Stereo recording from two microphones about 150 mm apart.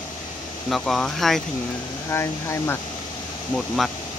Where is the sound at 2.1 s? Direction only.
15° left (ahead or behind).